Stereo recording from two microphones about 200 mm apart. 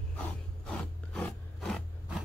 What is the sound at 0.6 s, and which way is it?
Rub, 5° left (ahead or behind).